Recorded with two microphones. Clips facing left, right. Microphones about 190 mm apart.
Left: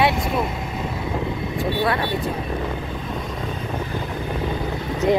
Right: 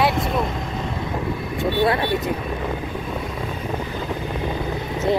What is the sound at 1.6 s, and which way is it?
Speech, 25° right (ahead or behind).